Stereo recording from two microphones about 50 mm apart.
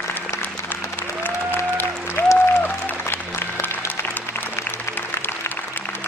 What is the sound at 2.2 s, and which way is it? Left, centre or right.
Applause, left.